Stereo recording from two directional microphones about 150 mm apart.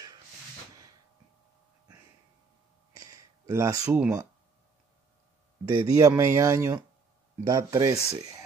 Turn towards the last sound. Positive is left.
turn(degrees=-25)  # may be behind; listen again after turning